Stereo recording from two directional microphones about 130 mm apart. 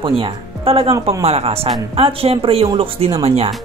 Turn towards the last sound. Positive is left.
turn(degrees=-50)  # may be behind; listen again after turning